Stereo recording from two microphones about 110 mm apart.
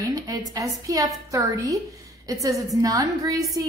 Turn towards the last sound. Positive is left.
turn(degrees=-35)  # may be behind; listen again after turning